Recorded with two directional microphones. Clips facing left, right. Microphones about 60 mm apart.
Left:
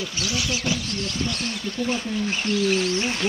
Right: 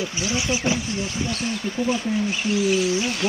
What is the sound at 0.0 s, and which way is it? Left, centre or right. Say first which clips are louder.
Speech: right 2 dB; right.